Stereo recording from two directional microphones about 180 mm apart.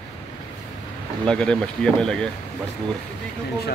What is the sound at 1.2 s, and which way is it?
Speech, 5° left (ahead or behind).